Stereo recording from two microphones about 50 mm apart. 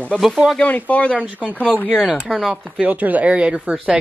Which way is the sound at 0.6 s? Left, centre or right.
Left.